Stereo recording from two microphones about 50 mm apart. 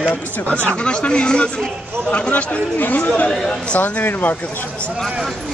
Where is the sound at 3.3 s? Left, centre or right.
Centre.